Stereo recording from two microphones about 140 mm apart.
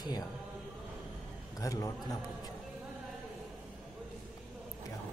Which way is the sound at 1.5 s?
25° left (ahead or behind).